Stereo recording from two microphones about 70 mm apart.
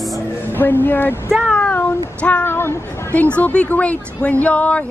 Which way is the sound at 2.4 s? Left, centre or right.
Left.